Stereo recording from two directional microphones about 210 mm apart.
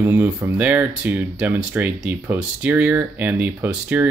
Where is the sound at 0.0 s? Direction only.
10° right (ahead or behind).